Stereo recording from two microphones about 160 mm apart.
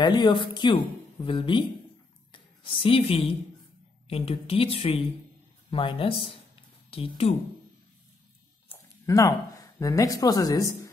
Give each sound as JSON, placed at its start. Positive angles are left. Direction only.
{"t": 0.0, "sound": "a woman's voice", "side_deg": 25}
{"t": 9.0, "sound": "speech", "side_deg": 20}